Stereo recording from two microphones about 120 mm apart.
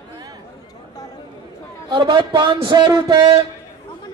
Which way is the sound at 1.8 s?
40° right (ahead or behind).